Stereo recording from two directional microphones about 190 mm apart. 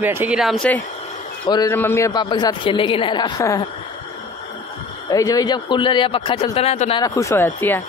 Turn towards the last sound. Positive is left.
turn(degrees=10)  # may be behind; listen again after turning